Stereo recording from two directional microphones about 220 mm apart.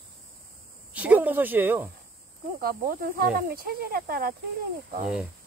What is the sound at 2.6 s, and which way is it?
Speech, 40° right (ahead or behind).